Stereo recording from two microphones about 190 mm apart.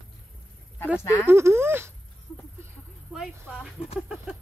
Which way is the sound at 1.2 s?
15° right (ahead or behind).